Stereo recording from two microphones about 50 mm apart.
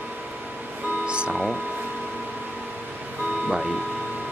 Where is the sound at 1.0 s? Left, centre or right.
Right.